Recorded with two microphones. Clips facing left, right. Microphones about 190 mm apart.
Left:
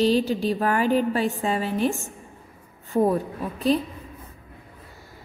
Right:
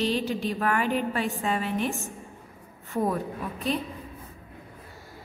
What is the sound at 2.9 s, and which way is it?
Speech, 30° left (ahead or behind).